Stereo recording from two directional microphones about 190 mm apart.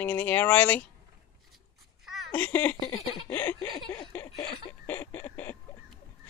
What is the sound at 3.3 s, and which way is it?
Speech, 10° left (ahead or behind).